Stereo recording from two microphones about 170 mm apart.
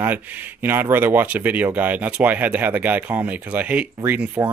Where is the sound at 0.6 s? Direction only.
10° right (ahead or behind).